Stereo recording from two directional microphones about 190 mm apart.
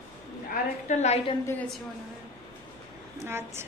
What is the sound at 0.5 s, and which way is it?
Speech, 40° left (ahead or behind).